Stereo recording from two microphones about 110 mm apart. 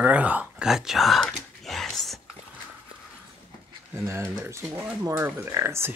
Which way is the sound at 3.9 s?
25° right (ahead or behind).